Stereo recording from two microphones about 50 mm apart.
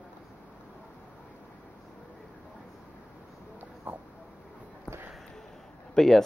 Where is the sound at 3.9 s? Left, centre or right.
Right.